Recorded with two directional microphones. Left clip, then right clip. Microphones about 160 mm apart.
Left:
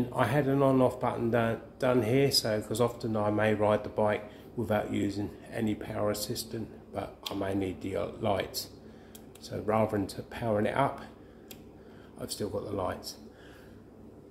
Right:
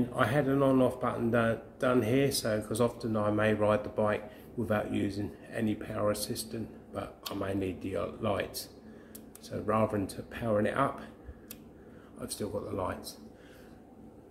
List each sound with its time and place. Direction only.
0.1 s speech: 20° left (ahead or behind)
12.2 s speech: 20° left (ahead or behind)